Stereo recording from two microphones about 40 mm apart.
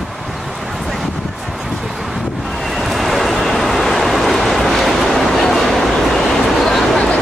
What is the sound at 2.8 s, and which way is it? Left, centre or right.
Vehicle, centre.